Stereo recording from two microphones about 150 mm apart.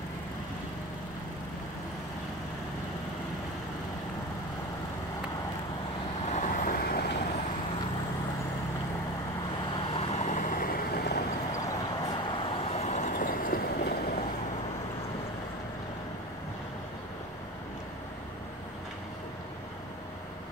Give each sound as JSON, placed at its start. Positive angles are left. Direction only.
{"t": 6.2, "sound": "vehicle", "side_deg": 55}
{"t": 9.9, "sound": "boat", "side_deg": 50}
{"t": 12.1, "sound": "vehicle", "side_deg": 35}